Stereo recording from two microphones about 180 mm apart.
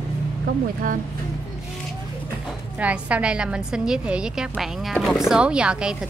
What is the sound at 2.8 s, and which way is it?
A woman's voice, 5° right (ahead or behind).